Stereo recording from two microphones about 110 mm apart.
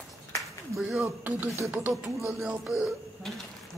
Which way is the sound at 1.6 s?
15° right (ahead or behind).